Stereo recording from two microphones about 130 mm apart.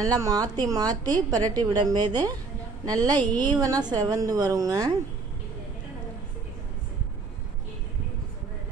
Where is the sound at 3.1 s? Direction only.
10° left (ahead or behind).